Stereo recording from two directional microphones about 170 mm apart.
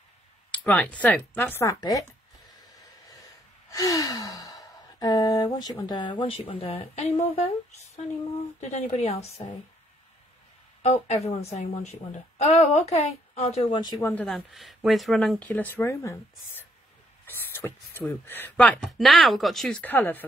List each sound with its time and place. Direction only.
0.5 s speech: 10° left (ahead or behind)
1.8 s sigh: 20° left (ahead or behind)
3.7 s sigh: 20° left (ahead or behind); by 8.0 s 40° left (ahead or behind)
8.5 s a woman's voice: 40° left (ahead or behind)
10.8 s a woman's voice: 40° left (ahead or behind)
14.0 s speech: 5° left (ahead or behind)